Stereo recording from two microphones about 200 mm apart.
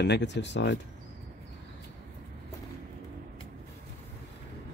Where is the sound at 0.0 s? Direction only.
60° left (ahead or behind).